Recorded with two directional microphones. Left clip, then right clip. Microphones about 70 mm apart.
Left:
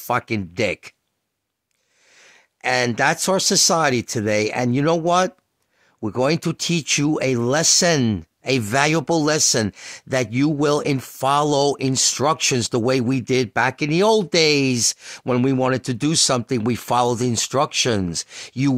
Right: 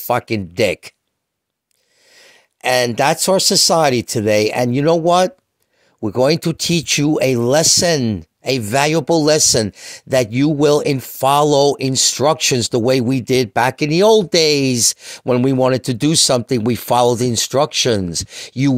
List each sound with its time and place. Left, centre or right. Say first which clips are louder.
0.1 s speech: right 4 dB; right
2.1 s a sound: right 4 dB; right
3.0 s speech: right 4 dB; right
13.6 s speech: right 5 dB; right